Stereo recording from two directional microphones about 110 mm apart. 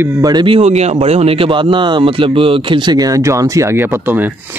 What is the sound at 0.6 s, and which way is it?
Speech, 80° right.